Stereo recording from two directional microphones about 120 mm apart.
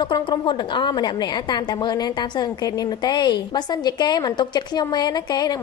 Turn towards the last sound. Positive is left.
turn(degrees=35)  # may be behind; listen again after turning